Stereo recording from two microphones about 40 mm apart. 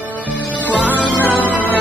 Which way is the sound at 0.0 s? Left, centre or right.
Right.